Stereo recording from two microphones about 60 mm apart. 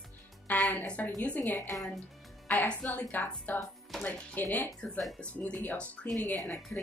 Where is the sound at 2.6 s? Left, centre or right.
Left.